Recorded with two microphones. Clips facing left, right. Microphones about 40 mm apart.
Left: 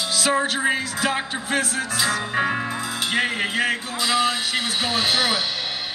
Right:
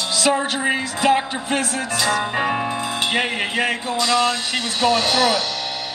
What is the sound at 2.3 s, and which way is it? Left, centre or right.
Speech, right.